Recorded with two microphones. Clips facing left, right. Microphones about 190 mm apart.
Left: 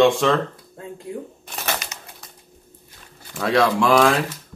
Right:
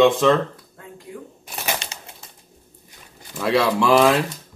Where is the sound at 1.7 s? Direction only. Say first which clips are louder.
Even; 30° right (ahead or behind).